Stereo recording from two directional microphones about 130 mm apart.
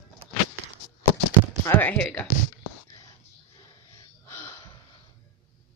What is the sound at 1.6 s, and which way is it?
Speech, 15° left (ahead or behind).